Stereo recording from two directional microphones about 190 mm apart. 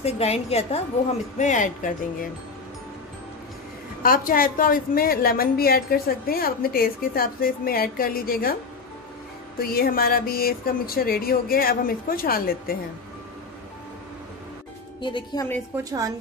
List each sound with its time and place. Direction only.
0.0 s a woman's voice: 35° left (ahead or behind)
4.0 s a woman's voice: 50° left (ahead or behind)
9.6 s a woman's voice: 50° left (ahead or behind)
15.0 s a woman's voice: 25° left (ahead or behind)
15.8 s a woman's voice: 20° right (ahead or behind)